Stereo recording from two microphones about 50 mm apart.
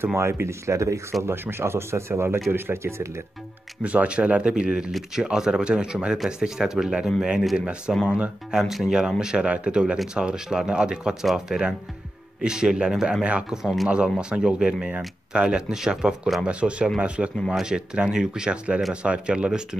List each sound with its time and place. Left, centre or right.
0.0 s speech: right
1.2 s speech: right
3.8 s speech: right; by 9.1 s centre
9.2 s speech: centre
13.2 s speech: right